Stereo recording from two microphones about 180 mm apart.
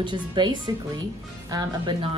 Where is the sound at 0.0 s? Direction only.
25° right (ahead or behind).